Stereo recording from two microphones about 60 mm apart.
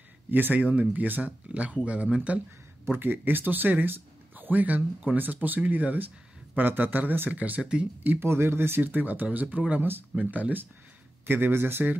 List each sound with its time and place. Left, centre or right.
0.3 s speech: right
2.9 s speech: right; by 7.9 s centre
8.0 s speech: right
8.3 s speech: right